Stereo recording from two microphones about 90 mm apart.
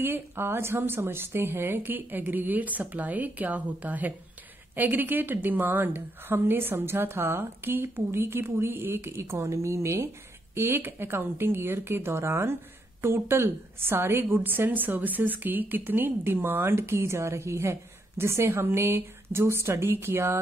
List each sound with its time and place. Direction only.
0.0 s a woman's voice: 25° right (ahead or behind)